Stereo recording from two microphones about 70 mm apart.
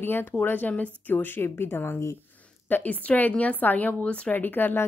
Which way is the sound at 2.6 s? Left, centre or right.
Left.